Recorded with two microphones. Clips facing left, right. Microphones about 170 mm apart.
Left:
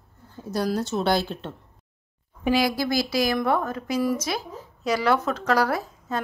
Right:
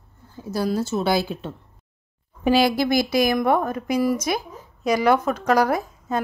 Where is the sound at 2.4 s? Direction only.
30° right (ahead or behind).